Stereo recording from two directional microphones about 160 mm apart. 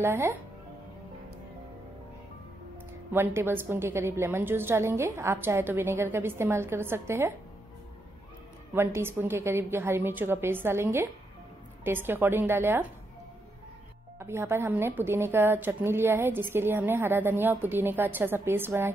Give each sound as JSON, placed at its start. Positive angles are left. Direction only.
{"t": 0.0, "sound": "a woman's voice", "side_deg": -15}
{"t": 3.1, "sound": "a woman's voice", "side_deg": -15}
{"t": 8.7, "sound": "a woman's voice", "side_deg": -15}
{"t": 14.2, "sound": "a woman's voice", "side_deg": -15}